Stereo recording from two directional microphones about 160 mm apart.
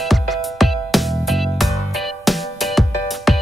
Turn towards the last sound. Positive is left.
turn(degrees=0)  # may be behind; listen again after turning